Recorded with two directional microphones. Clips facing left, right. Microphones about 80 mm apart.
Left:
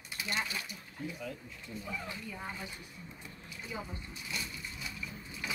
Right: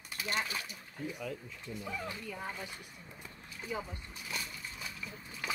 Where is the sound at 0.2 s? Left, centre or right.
Right.